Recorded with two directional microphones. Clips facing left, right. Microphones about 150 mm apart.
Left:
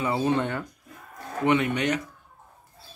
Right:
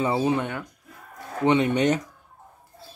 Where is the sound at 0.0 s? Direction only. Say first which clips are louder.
Right 3 dB; 25° right (ahead or behind).